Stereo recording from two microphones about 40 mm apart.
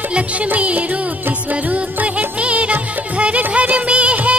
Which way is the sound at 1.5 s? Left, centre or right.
Right.